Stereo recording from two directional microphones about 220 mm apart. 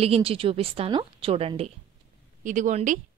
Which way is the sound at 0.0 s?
25° right (ahead or behind).